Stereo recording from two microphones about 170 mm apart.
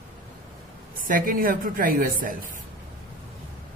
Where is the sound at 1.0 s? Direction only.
55° right (ahead or behind).